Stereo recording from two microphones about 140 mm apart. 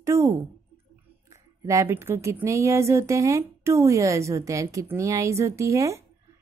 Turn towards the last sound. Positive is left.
turn(degrees=-20)  # may be behind; listen again after turning